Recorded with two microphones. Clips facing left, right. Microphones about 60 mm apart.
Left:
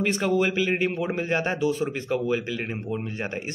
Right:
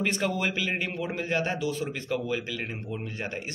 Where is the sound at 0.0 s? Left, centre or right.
Centre.